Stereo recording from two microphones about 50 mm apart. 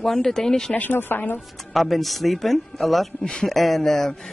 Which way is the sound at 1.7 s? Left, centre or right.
Centre.